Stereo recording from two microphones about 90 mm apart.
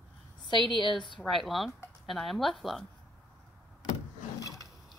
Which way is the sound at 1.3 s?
Centre (ahead or behind).